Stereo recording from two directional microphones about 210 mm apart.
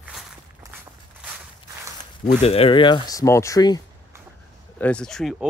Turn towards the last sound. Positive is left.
turn(degrees=0)  # may be behind; listen again after turning